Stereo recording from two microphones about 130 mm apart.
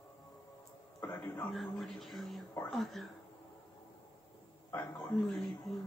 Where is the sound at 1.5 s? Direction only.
Centre (ahead or behind).